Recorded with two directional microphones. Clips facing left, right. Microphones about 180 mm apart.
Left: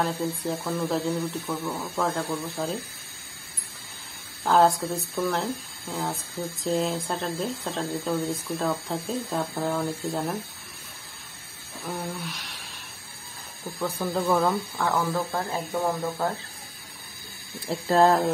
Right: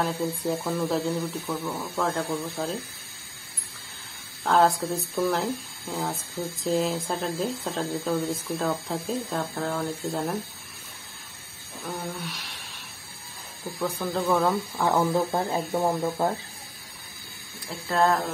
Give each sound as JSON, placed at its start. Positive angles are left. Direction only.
{"t": 0.0, "sound": "speech", "side_deg": 0}
{"t": 4.5, "sound": "speech", "side_deg": 0}
{"t": 6.6, "sound": "speech", "side_deg": 0}
{"t": 11.8, "sound": "speech", "side_deg": 0}
{"t": 13.7, "sound": "speech", "side_deg": 0}
{"t": 14.8, "sound": "speech", "side_deg": -20}
{"t": 17.6, "sound": "speech", "side_deg": 35}